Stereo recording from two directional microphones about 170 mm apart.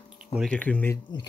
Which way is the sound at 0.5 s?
10° left (ahead or behind).